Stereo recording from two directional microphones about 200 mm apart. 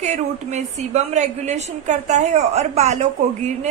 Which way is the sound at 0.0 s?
35° right (ahead or behind).